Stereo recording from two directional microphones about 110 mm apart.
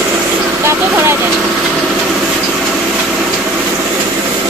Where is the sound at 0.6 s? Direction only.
20° right (ahead or behind).